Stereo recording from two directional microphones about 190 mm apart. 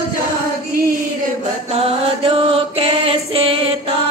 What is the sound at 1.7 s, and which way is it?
Mantra, 30° right (ahead or behind).